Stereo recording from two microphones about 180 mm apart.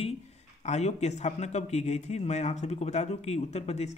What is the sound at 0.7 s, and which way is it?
Speech, 40° left (ahead or behind).